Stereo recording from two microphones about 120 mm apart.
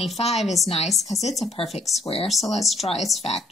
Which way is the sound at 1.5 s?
60° left (ahead or behind).